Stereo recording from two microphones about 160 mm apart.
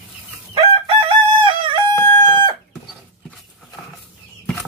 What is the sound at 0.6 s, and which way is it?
Crowing, 35° right (ahead or behind).